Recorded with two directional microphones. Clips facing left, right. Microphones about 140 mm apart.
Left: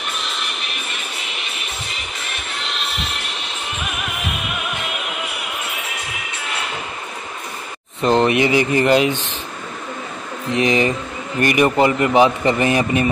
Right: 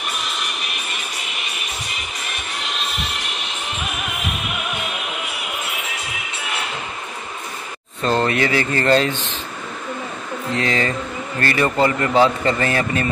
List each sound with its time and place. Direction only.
8.0 s speech: 20° left (ahead or behind)
10.5 s speech: 20° left (ahead or behind)